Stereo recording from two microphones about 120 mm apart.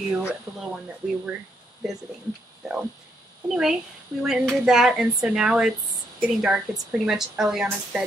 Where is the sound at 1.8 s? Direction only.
5° right (ahead or behind).